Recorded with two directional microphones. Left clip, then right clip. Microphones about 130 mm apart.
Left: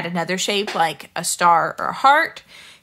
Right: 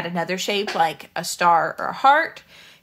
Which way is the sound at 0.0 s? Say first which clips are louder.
Left 2 dB; 30° left (ahead or behind).